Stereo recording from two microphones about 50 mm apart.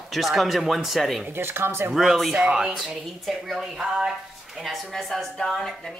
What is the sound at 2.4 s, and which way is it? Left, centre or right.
Speech, centre.